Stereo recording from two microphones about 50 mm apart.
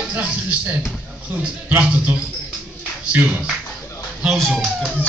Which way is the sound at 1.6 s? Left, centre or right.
Right.